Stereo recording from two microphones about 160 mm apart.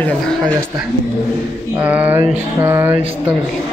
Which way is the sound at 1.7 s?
10° right (ahead or behind).